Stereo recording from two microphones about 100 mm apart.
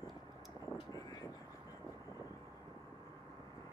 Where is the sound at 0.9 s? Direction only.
40° left (ahead or behind).